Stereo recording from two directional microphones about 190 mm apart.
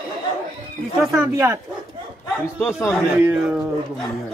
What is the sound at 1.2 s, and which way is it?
Speech, 15° right (ahead or behind).